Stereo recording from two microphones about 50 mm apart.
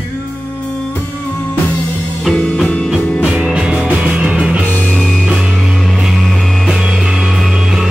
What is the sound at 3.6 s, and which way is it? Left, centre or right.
Music, centre.